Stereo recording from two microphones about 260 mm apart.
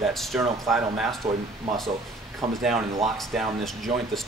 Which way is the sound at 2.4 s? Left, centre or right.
Right.